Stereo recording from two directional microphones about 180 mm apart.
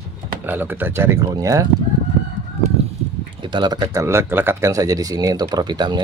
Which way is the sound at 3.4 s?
25° right (ahead or behind).